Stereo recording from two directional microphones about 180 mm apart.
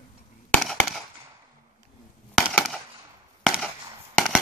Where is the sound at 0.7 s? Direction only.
Centre (ahead or behind).